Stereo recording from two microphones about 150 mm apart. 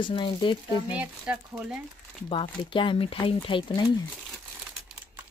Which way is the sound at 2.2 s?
35° left (ahead or behind).